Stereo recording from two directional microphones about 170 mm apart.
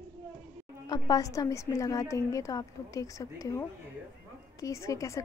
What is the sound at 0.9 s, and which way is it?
A woman's voice, 20° left (ahead or behind).